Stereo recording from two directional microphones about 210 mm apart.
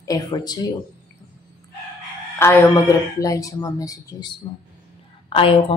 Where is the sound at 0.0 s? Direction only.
15° left (ahead or behind).